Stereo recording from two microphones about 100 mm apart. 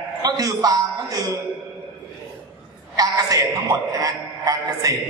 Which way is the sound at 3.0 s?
35° right (ahead or behind).